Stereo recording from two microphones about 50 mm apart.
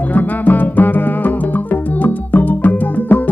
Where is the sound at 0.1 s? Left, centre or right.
Left.